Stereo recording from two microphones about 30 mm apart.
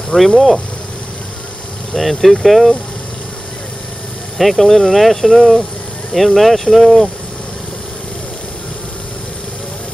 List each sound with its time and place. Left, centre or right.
0.1 s speech: left
2.0 s speech: centre
4.4 s speech: centre